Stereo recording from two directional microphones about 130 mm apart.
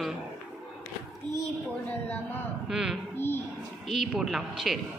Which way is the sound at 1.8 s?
10° left (ahead or behind).